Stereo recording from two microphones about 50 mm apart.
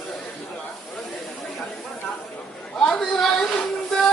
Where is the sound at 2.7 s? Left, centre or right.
Left.